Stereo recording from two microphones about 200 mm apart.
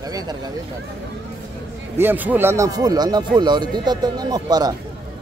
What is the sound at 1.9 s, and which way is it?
Speech, 10° right (ahead or behind).